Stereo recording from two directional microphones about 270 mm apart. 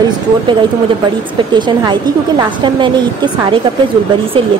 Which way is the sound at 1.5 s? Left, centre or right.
Centre.